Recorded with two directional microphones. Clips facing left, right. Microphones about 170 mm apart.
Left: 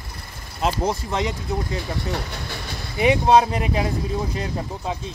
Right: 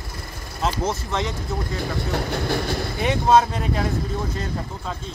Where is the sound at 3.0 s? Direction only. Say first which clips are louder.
Left 2 dB; 10° left (ahead or behind).